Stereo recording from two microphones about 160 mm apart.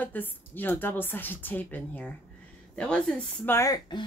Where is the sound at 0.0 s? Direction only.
10° left (ahead or behind).